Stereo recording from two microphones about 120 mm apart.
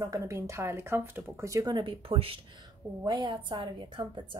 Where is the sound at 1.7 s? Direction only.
50° right (ahead or behind).